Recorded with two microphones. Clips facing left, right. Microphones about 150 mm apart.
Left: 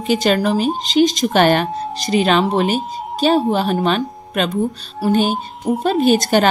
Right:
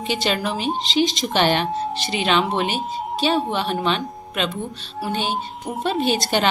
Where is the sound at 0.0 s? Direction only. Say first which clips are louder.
Left 7 dB; 45° left (ahead or behind).